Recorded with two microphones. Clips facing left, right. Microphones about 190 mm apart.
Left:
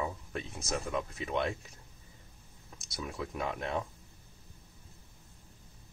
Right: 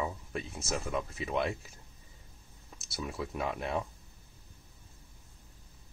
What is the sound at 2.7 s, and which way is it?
Speech, 5° right (ahead or behind).